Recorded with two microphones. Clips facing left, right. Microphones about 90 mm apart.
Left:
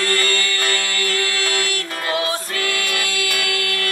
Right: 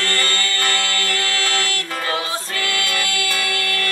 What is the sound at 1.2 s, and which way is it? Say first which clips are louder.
Music: even; 20° left (ahead or behind).